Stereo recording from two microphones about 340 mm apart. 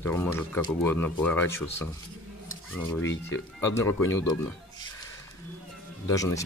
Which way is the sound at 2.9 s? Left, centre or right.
Centre.